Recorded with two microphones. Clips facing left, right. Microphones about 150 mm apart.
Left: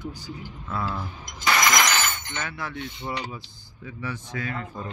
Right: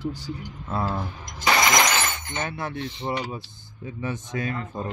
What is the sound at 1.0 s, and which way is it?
Music, 25° right (ahead or behind).